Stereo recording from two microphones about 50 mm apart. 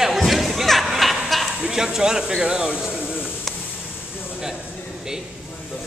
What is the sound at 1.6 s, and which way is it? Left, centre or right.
Speech, centre.